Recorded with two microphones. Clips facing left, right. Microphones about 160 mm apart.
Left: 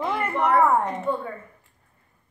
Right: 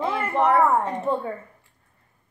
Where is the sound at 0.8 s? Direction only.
30° right (ahead or behind).